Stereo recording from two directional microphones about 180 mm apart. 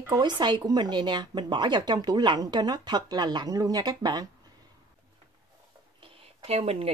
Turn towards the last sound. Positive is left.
turn(degrees=-35)  # may be behind; listen again after turning